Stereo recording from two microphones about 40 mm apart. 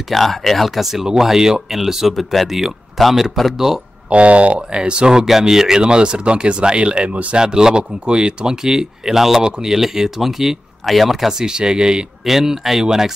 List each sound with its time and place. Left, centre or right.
0.1 s speech: centre
4.1 s speech: right
4.7 s speech: right
5.2 s speech: centre
11.4 s speech: centre
12.3 s speech: centre